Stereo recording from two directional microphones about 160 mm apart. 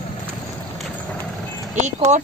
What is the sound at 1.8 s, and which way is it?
Speech, 45° right (ahead or behind).